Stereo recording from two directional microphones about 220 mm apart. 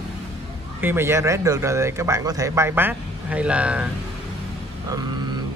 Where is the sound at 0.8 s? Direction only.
10° right (ahead or behind).